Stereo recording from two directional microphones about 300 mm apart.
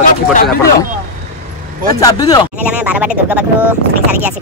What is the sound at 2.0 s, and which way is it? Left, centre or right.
Speech, centre.